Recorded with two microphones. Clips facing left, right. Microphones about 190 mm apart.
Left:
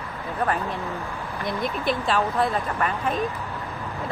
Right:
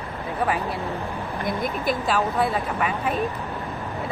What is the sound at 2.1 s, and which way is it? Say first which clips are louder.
A woman's voice: even; 5° right (ahead or behind).